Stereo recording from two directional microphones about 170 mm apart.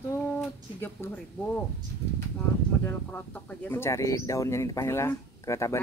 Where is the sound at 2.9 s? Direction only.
10° left (ahead or behind).